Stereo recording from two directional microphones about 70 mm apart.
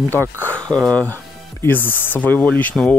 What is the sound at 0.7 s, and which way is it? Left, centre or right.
Speech, centre.